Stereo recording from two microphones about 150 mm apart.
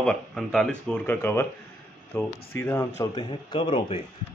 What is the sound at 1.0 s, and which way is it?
Speech, 15° left (ahead or behind).